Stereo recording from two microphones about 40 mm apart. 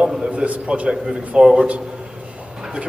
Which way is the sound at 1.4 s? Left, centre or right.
Right.